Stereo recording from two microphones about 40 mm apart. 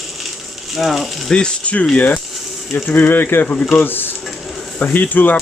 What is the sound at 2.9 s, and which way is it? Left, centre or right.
Speech, left.